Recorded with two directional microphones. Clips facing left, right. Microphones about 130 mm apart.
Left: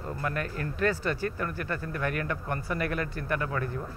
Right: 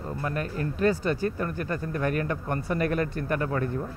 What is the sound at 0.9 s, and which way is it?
Speech, 20° right (ahead or behind).